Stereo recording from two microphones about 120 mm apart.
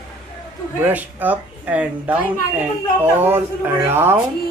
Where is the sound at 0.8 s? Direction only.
15° right (ahead or behind).